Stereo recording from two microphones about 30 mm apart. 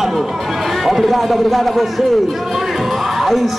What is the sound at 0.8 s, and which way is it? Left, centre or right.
A man's voice, centre.